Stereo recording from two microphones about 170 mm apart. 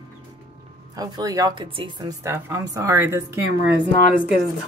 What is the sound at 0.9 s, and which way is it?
A woman's voice, 20° right (ahead or behind).